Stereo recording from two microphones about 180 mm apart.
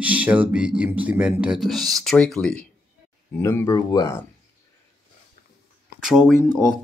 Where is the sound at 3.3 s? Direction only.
15° left (ahead or behind).